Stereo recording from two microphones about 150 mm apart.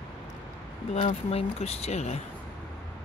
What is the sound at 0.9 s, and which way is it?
Speech, 45° left (ahead or behind).